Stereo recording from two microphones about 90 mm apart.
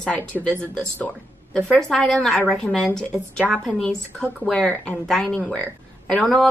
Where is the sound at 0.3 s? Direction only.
10° left (ahead or behind).